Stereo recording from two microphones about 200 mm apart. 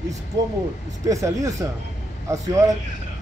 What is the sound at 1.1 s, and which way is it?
Speech, 15° right (ahead or behind).